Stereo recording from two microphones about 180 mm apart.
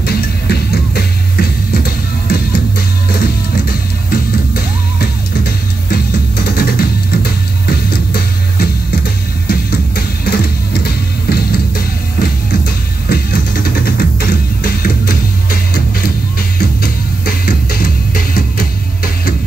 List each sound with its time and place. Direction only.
0.0 s music: 60° left (ahead or behind)
6.4 s music: 55° left (ahead or behind)